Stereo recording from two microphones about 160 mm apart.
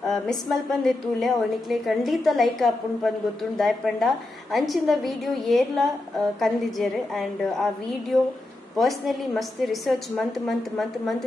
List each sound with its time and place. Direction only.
0.1 s a woman's voice: centre (ahead or behind)
8.7 s a woman's voice: centre (ahead or behind)